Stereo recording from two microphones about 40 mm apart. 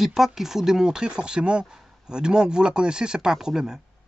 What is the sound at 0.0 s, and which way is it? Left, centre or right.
Speech, centre.